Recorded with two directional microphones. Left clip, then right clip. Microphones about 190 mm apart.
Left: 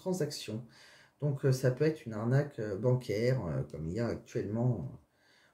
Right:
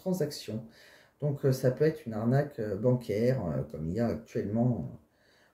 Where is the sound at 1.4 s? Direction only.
15° left (ahead or behind).